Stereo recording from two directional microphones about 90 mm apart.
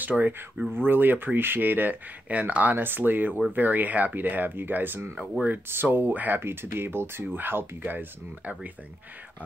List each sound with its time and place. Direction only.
0.1 s speech: centre (ahead or behind)
0.6 s speech: 20° right (ahead or behind)